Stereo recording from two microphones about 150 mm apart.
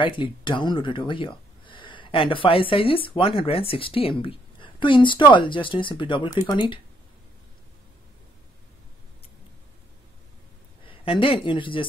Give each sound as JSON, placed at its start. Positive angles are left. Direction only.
{"t": 0.0, "sound": "speech", "side_deg": 30}
{"t": 10.9, "sound": "speech", "side_deg": 35}